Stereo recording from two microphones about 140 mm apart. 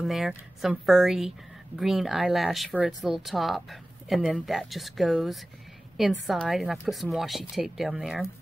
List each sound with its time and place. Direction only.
0.0 s a woman's voice: centre (ahead or behind)